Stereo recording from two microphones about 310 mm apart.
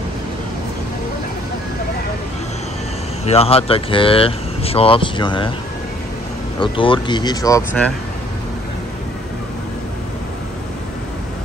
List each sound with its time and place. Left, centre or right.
3.3 s speech: centre
6.6 s speech: centre